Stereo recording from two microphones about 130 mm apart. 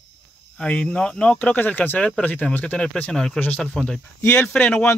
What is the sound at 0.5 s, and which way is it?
Speech, 10° left (ahead or behind).